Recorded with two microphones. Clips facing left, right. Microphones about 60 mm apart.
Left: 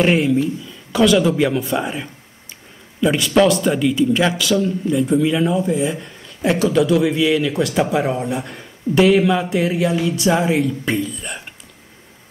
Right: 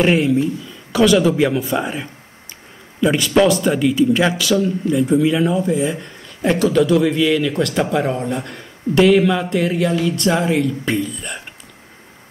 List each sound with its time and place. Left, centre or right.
0.0 s speech: centre
11.0 s speech: centre